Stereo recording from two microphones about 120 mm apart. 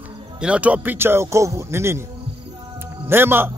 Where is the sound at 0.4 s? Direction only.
10° right (ahead or behind).